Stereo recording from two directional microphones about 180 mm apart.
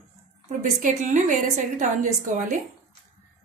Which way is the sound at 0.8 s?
45° right (ahead or behind).